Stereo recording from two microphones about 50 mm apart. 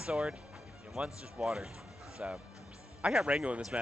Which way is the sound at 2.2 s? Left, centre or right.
Right.